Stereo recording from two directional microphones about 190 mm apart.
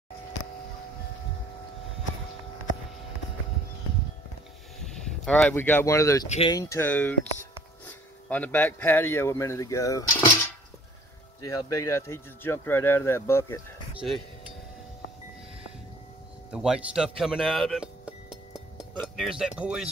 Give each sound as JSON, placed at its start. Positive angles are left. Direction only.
{"t": 4.8, "sound": "speech", "side_deg": 5}
{"t": 6.2, "sound": "speech", "side_deg": 35}
{"t": 6.5, "sound": "a man's voice", "side_deg": 15}
{"t": 13.9, "sound": "speech", "side_deg": 0}
{"t": 16.5, "sound": "speech", "side_deg": -5}